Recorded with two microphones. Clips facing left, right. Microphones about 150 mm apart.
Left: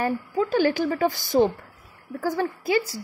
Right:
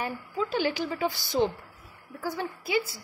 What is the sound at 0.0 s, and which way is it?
A woman's voice, 45° left (ahead or behind).